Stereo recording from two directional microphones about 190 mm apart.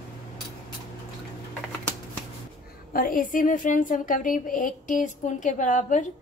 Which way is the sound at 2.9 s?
45° left (ahead or behind).